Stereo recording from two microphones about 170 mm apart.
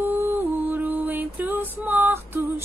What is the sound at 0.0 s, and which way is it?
Music, 10° right (ahead or behind).